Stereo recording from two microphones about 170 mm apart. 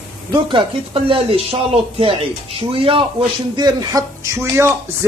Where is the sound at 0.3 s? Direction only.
30° right (ahead or behind).